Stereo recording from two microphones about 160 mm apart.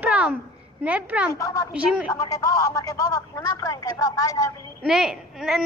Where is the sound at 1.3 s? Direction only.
20° left (ahead or behind).